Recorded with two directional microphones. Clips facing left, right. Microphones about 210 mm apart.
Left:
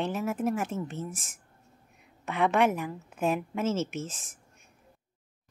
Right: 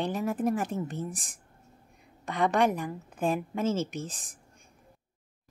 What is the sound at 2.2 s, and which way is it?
Speech, 5° left (ahead or behind).